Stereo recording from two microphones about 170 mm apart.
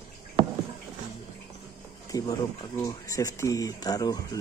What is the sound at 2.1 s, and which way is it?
Speech, 20° left (ahead or behind).